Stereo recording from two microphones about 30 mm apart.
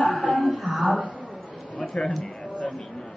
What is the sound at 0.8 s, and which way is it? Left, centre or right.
Speech, right.